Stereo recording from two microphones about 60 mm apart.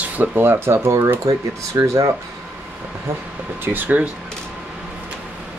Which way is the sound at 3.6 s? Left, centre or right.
Right.